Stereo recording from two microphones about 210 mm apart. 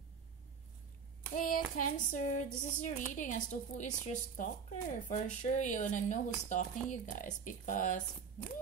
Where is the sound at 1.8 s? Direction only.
35° left (ahead or behind).